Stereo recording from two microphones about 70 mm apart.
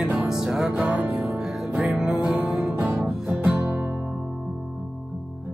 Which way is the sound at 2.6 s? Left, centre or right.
Centre.